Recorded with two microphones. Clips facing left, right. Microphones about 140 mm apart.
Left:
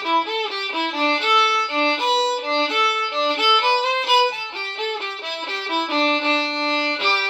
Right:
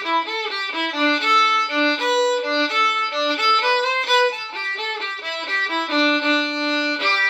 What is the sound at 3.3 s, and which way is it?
Music, 10° left (ahead or behind).